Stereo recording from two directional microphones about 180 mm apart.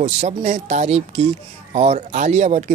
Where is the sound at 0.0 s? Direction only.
35° right (ahead or behind).